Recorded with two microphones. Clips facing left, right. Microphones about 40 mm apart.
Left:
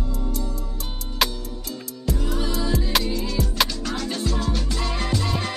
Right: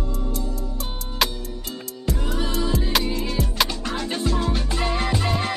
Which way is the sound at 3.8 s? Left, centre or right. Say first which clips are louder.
Right 1 dB; right.